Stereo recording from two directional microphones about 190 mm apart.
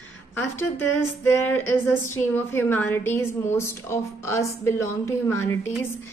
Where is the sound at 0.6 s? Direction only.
10° left (ahead or behind).